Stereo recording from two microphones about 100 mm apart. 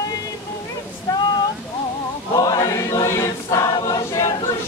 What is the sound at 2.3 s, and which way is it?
Choir, 40° left (ahead or behind).